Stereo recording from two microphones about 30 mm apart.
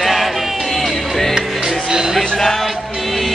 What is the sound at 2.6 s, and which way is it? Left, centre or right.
Music, centre.